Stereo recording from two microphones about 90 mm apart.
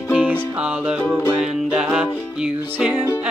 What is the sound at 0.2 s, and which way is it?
Music, 15° right (ahead or behind).